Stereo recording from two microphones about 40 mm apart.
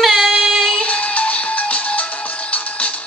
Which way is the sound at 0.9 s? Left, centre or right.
Left.